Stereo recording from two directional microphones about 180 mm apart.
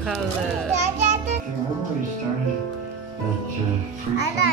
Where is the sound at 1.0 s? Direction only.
40° right (ahead or behind).